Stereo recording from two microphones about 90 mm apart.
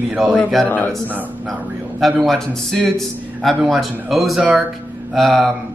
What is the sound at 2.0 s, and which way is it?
A man's voice, centre (ahead or behind).